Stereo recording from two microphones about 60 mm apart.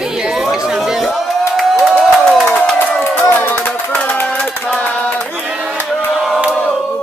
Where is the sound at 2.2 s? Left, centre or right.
Centre.